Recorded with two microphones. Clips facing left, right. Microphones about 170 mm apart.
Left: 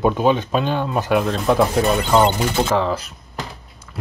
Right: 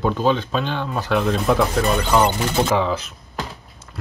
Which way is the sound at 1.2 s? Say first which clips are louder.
Even; centre (ahead or behind).